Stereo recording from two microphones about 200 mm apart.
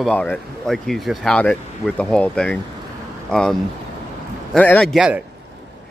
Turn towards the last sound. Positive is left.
turn(degrees=0)  # may be behind; listen again after turning